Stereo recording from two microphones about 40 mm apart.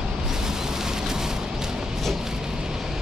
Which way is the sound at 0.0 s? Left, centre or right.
Centre.